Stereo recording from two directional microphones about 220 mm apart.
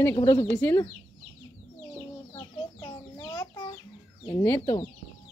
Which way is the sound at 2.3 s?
20° left (ahead or behind).